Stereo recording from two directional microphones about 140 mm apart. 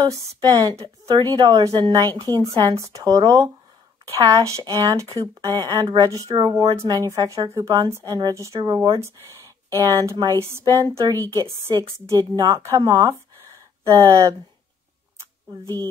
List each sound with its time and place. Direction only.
0.0 s a woman's voice: 25° right (ahead or behind)
15.6 s a woman's voice: 20° left (ahead or behind)